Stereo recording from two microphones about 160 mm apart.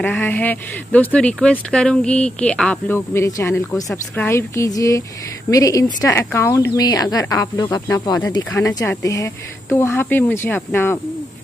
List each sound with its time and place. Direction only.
0.0 s speech: 10° left (ahead or behind)